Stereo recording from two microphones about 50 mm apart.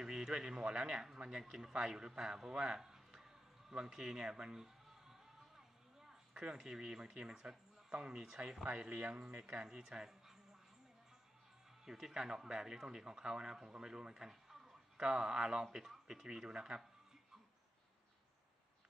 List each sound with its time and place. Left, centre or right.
0.0 s speech: centre
8.6 s speech: right
9.4 s speech: centre
11.8 s speech: centre